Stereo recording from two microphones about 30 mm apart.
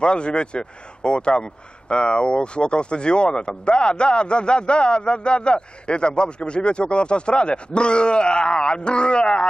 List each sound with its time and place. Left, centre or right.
0.0 s a man's voice: left